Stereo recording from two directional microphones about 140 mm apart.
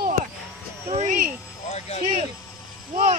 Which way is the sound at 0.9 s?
60° right (ahead or behind).